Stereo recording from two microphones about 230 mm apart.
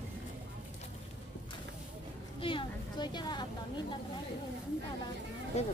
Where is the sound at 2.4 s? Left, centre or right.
Left.